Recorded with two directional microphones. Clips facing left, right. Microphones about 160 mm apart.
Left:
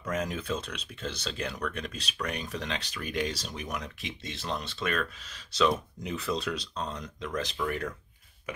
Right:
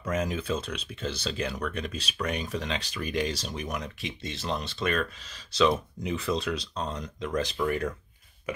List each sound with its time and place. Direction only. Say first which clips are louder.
0.0 s speech: right 3 dB; 5° right (ahead or behind)